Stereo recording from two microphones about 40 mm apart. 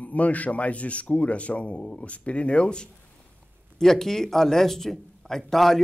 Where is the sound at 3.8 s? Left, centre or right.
Centre.